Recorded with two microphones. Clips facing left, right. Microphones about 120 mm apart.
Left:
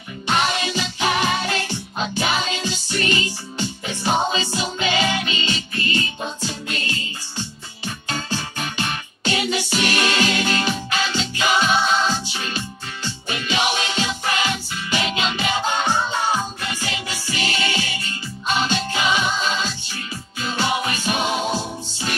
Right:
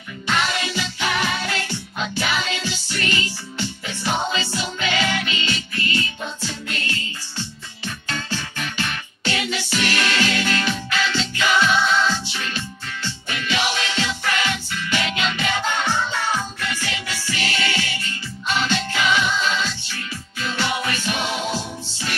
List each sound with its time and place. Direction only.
0.3 s music: 25° left (ahead or behind)